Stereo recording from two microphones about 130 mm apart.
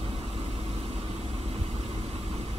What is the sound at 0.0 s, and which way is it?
Vehicle, 45° right (ahead or behind).